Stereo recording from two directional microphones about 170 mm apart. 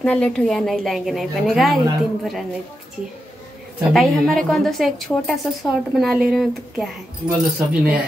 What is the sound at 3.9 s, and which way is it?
A woman's voice, centre (ahead or behind).